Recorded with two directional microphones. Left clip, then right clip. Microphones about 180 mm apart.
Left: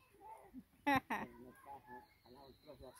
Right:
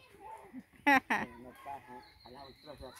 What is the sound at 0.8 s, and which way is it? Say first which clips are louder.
Speech: right 9 dB; 15° right (ahead or behind).